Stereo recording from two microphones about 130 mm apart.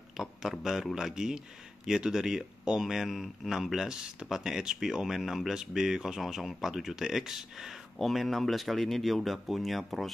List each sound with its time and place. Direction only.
0.2 s speech: 5° right (ahead or behind)